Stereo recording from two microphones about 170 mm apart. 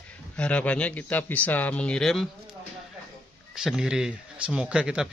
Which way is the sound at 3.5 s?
5° right (ahead or behind).